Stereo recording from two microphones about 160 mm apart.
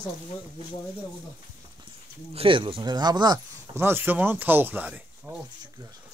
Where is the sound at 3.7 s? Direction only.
15° right (ahead or behind).